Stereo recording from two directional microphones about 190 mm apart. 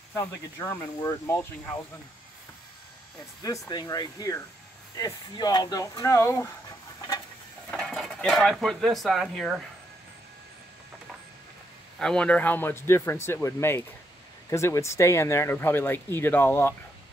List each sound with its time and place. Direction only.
0.1 s speech: 15° left (ahead or behind)
3.4 s speech: 20° left (ahead or behind)
7.7 s speech: centre (ahead or behind)
12.0 s speech: 5° left (ahead or behind)